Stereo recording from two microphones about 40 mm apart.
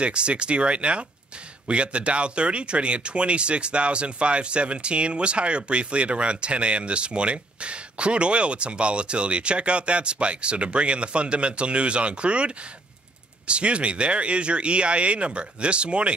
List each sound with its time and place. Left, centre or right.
0.0 s speech: right